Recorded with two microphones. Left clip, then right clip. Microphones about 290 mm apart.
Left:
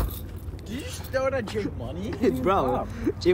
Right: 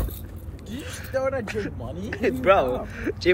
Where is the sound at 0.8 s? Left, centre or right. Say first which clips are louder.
Right 1 dB; centre.